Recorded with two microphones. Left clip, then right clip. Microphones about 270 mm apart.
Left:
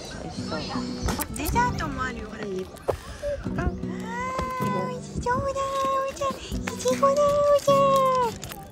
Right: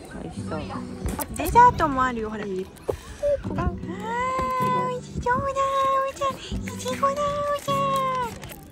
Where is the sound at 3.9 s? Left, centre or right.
Centre.